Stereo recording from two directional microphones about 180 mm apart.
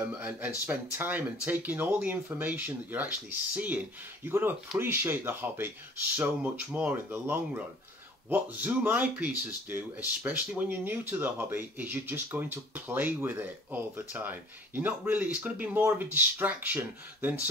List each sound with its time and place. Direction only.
0.1 s speech: 10° right (ahead or behind)